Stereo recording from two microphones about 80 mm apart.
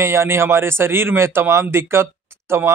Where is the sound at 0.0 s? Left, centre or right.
Right.